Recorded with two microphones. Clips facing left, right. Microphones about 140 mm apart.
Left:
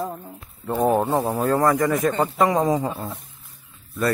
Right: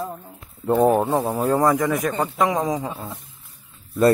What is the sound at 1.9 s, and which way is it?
Speech, 5° right (ahead or behind).